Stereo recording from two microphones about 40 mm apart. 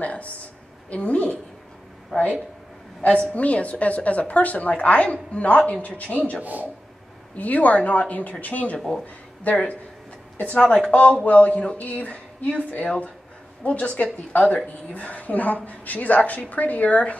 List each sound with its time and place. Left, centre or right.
0.0 s a sound: left
2.1 s a sound: centre
3.0 s a woman's voice: left
6.4 s speech: right
7.3 s a woman's voice: left
15.0 s a woman's voice: left